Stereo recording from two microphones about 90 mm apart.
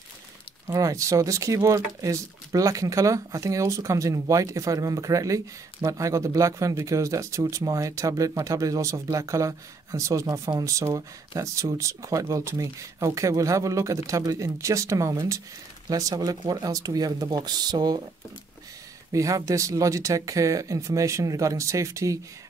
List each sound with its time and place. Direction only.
0.7 s speech: 40° right (ahead or behind)
19.1 s speech: 35° right (ahead or behind)